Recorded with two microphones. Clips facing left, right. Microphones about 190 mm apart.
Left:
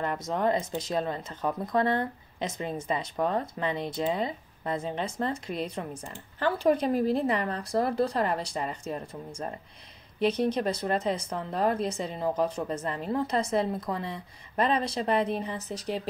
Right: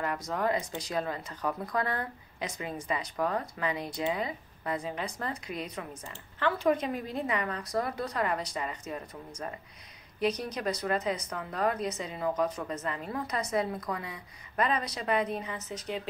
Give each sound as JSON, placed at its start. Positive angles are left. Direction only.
{"t": 0.0, "sound": "a woman's voice", "side_deg": 25}